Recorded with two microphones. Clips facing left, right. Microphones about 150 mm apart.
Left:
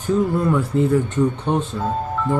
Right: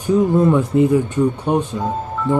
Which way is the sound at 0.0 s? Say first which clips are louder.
Right 4 dB; 15° right (ahead or behind).